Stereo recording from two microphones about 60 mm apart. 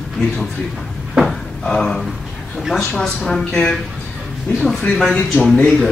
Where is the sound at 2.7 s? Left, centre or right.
Centre.